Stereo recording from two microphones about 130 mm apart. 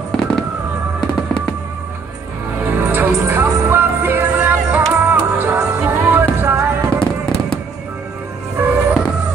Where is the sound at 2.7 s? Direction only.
15° right (ahead or behind).